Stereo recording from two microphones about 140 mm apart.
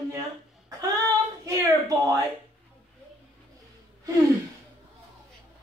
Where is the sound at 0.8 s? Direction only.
25° right (ahead or behind).